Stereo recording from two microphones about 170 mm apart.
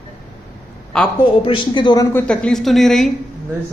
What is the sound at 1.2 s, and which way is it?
Speech, 30° left (ahead or behind).